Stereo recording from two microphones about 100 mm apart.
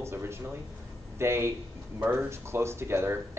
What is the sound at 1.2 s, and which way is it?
Speech, 25° right (ahead or behind).